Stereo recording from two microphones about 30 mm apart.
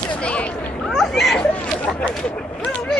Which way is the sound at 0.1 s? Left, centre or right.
Left.